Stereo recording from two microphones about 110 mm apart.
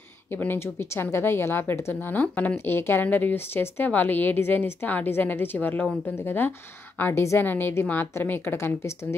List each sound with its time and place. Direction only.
0.3 s speech: 20° left (ahead or behind)